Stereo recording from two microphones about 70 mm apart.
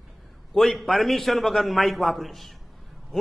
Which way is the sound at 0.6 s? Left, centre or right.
Centre.